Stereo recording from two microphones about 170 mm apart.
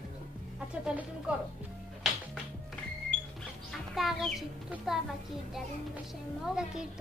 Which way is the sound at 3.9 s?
Centre (ahead or behind).